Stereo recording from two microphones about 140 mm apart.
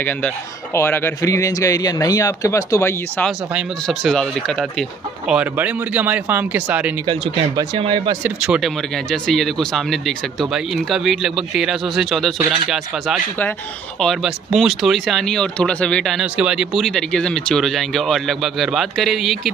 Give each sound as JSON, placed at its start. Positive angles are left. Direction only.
{"t": 0.7, "sound": "speech", "side_deg": 15}
{"t": 3.8, "sound": "speech", "side_deg": 5}
{"t": 7.1, "sound": "speech", "side_deg": -35}
{"t": 8.2, "sound": "speech", "side_deg": -5}